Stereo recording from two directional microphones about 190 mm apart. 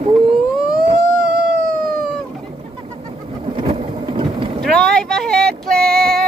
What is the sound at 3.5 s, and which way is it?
Vehicle, 25° right (ahead or behind).